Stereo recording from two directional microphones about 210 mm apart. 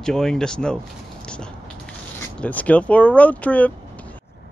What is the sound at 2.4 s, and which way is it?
Speech, 5° left (ahead or behind).